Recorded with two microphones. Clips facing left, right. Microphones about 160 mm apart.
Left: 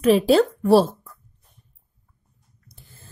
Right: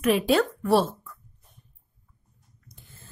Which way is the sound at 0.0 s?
30° left (ahead or behind).